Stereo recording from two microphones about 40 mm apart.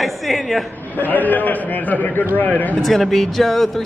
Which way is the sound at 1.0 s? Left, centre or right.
Left.